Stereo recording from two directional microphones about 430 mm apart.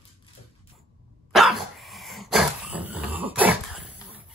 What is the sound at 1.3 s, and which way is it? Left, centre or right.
Dog, centre.